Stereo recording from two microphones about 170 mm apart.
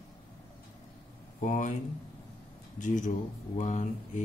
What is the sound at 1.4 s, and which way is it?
Mantra, 50° left (ahead or behind).